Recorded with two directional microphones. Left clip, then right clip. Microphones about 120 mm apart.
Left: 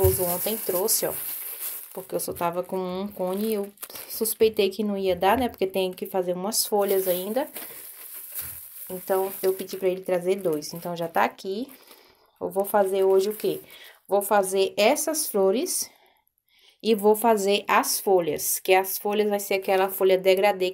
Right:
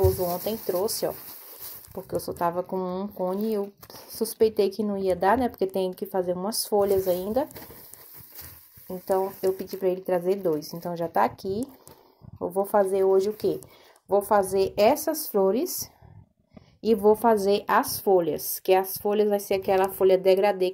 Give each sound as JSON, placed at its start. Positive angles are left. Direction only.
{"t": 0.4, "sound": "speech", "side_deg": 20}
{"t": 3.8, "sound": "speech", "side_deg": 60}
{"t": 4.4, "sound": "speech", "side_deg": 15}
{"t": 7.2, "sound": "speech", "side_deg": 10}
{"t": 9.0, "sound": "speech", "side_deg": 20}
{"t": 12.4, "sound": "speech", "side_deg": 20}